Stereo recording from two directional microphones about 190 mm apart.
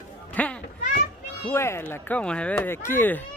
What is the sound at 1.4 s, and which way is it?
Speech, 15° left (ahead or behind).